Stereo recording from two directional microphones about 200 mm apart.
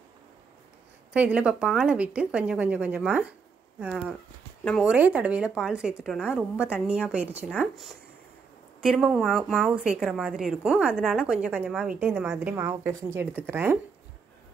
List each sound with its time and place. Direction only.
1.1 s a woman's voice: 5° right (ahead or behind)